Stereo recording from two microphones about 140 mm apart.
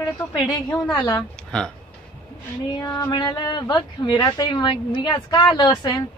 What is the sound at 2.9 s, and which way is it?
Speech, 30° left (ahead or behind).